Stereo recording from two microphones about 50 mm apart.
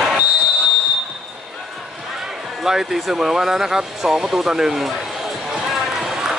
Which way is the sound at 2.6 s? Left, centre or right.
Centre.